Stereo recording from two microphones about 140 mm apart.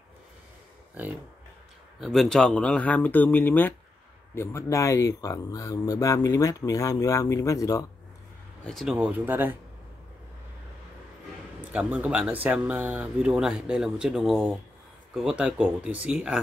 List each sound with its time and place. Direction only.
2.0 s speech: centre (ahead or behind); by 7.8 s 25° left (ahead or behind)
8.6 s speech: centre (ahead or behind)
8.9 s speech: 10° right (ahead or behind)
11.7 s speech: 10° right (ahead or behind)